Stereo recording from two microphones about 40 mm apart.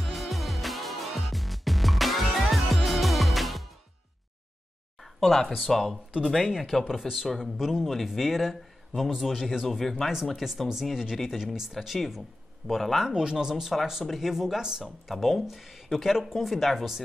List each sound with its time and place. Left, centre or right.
0.0 s music: centre
5.0 s a sound: centre
5.6 s speech: centre
6.8 s speech: centre
9.8 s speech: centre
10.3 s speech: centre
13.1 s speech: centre